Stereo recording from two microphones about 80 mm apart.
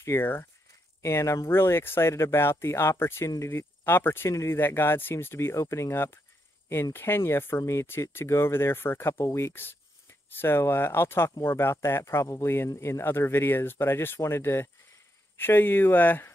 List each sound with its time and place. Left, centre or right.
0.0 s speech: left